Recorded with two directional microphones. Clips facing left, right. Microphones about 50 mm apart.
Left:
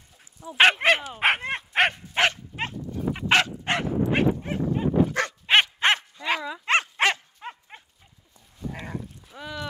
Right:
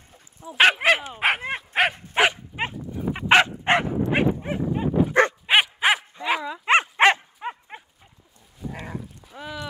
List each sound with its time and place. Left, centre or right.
0.5 s dog: centre; by 3.8 s right
4.1 s dog: centre
8.7 s dog: centre